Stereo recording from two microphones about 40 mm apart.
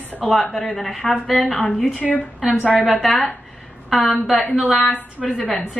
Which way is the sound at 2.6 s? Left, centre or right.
Left.